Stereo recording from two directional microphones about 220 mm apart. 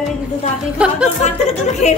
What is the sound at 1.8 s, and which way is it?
Speech, 30° left (ahead or behind).